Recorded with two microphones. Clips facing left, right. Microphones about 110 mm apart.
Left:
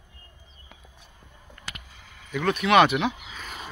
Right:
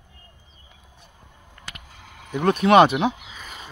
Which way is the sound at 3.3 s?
Centre (ahead or behind).